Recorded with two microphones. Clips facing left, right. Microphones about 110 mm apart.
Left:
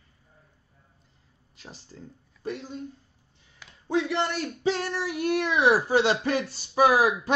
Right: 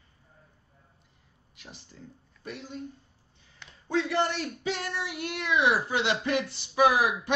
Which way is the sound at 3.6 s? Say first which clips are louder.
Even; 5° left (ahead or behind).